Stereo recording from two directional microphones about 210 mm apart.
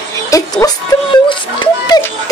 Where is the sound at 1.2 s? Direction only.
20° left (ahead or behind).